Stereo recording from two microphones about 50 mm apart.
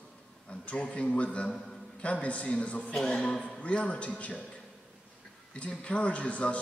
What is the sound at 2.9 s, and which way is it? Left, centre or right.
A man's voice, centre.